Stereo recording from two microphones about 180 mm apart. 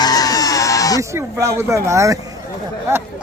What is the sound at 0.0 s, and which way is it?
Music, 20° left (ahead or behind).